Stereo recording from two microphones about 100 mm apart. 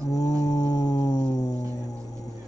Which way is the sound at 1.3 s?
35° left (ahead or behind).